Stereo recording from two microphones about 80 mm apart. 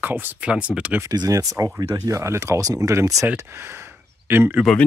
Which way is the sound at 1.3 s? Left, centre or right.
Right.